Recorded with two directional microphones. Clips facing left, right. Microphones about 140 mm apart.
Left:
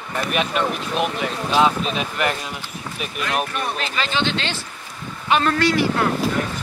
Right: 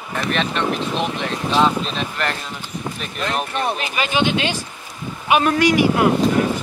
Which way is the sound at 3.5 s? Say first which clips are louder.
Right 3 dB; 15° right (ahead or behind).